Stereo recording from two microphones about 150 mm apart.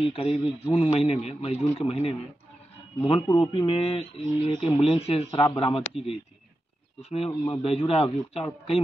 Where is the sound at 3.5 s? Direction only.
35° left (ahead or behind).